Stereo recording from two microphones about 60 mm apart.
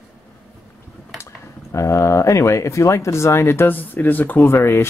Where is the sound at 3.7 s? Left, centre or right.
Left.